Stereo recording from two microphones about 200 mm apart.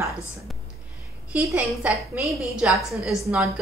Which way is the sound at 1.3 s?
5° right (ahead or behind).